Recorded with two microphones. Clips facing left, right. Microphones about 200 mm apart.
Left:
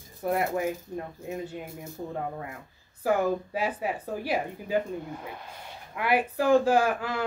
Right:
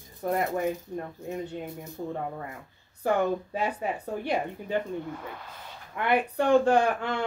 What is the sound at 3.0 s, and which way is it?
Speech, 5° left (ahead or behind).